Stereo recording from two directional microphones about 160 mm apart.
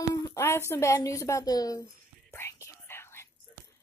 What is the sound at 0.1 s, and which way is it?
A woman's voice, 20° left (ahead or behind).